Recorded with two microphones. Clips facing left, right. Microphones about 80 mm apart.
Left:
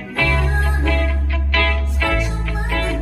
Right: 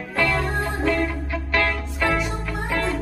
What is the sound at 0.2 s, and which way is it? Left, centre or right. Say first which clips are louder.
Music: left 1 dB; right.